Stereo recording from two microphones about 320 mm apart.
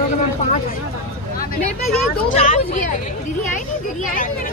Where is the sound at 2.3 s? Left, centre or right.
Left.